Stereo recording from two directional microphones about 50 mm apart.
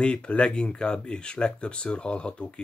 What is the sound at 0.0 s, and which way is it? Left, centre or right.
Speech, left.